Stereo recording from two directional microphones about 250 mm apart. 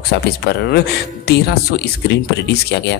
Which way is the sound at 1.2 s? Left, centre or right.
Left.